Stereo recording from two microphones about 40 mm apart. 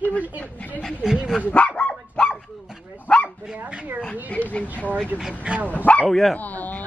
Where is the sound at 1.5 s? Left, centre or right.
Left.